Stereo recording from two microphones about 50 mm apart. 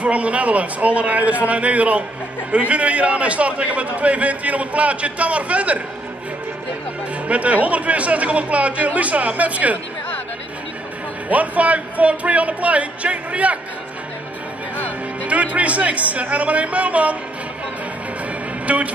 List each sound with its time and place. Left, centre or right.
0.0 s a man's voice: right
7.2 s a man's voice: right
11.2 s a man's voice: right
15.2 s a man's voice: right
18.7 s a man's voice: right